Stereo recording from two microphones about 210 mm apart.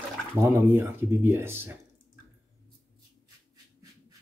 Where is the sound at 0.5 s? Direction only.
10° right (ahead or behind).